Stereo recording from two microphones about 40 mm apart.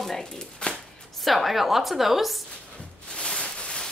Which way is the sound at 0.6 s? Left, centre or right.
Left.